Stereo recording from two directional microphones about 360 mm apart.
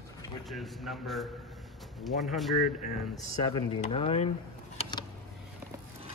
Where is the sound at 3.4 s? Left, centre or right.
Centre.